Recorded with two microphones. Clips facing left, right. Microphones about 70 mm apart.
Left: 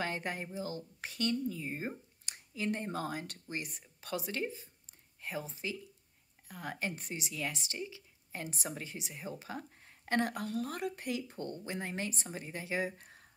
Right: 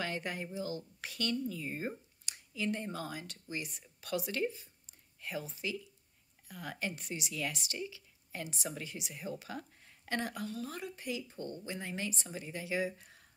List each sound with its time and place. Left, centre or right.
0.0 s speech: left
2.2 s speech: left
4.0 s speech: left